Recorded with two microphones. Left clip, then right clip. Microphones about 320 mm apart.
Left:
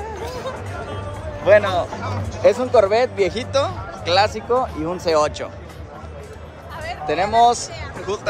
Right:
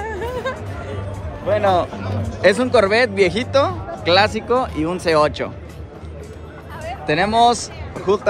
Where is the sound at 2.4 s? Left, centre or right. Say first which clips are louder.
Even; right.